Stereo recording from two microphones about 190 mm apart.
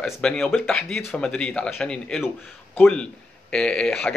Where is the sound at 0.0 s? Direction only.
5° left (ahead or behind).